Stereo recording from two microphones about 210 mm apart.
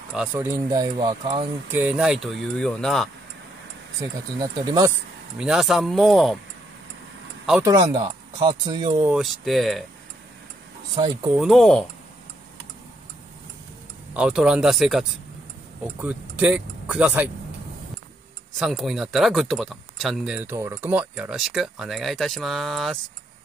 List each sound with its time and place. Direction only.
0.1 s speech: 5° right (ahead or behind)
1.7 s speech: 10° right (ahead or behind)
4.4 s speech: 15° right (ahead or behind)
5.4 s speech: centre (ahead or behind)
7.6 s speech: 20° right (ahead or behind)
9.0 s speech: 5° right (ahead or behind)
11.0 s speech: 25° right (ahead or behind)
11.3 s speech: centre (ahead or behind)
14.1 s speech: 5° right (ahead or behind)
18.6 s speech: centre (ahead or behind)